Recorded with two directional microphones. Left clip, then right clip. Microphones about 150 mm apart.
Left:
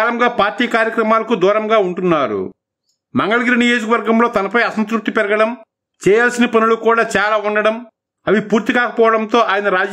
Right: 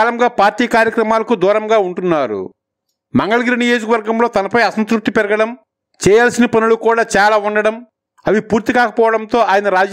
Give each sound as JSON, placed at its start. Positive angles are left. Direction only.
{"t": 0.2, "sound": "a man's voice", "side_deg": -40}